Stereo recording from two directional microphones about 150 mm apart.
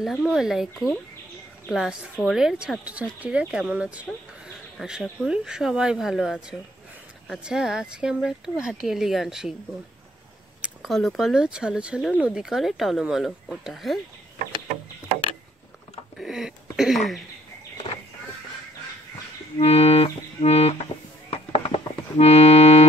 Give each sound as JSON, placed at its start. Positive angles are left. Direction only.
{"t": 0.0, "sound": "speech", "side_deg": -5}
{"t": 10.6, "sound": "speech", "side_deg": 0}
{"t": 16.2, "sound": "a sound", "side_deg": -5}
{"t": 16.7, "sound": "speech", "side_deg": -5}
{"t": 19.6, "sound": "accordion", "side_deg": 45}